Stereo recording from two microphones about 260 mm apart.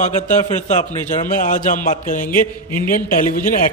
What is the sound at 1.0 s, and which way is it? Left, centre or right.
A man's voice, left.